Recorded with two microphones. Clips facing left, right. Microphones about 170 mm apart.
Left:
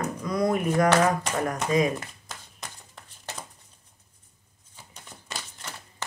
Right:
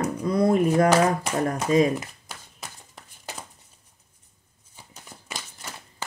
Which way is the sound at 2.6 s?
5° right (ahead or behind).